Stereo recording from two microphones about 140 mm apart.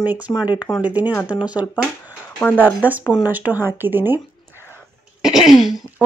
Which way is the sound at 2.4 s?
10° left (ahead or behind).